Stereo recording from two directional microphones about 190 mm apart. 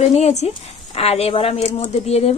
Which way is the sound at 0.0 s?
35° left (ahead or behind).